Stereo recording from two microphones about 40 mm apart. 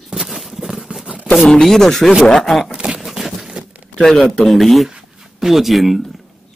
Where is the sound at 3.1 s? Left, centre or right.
Centre.